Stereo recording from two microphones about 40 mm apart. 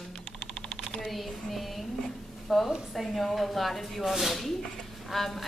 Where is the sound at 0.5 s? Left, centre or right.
Centre.